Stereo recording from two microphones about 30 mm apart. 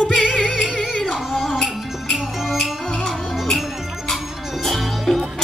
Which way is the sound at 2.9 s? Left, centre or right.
Centre.